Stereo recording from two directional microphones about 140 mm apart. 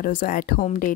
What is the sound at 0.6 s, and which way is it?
Speech, 65° left (ahead or behind).